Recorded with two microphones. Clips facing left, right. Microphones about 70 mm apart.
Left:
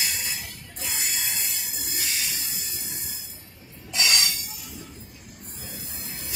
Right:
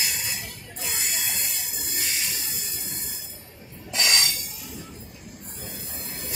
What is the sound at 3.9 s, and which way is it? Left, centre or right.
Train wheels squealing, right.